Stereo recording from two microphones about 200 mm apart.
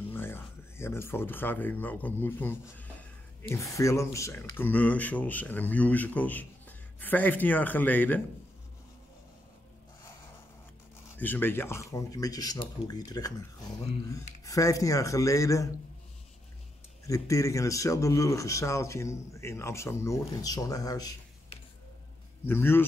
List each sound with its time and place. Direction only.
0.1 s a man's voice: 10° left (ahead or behind)
11.1 s a man's voice: 10° left (ahead or behind)
14.4 s a man's voice: 15° left (ahead or behind)
17.1 s a man's voice: 15° left (ahead or behind)